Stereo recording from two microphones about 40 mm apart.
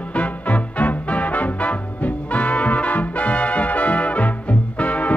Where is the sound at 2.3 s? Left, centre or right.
Left.